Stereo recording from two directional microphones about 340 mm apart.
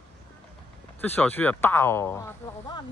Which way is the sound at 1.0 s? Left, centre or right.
Centre.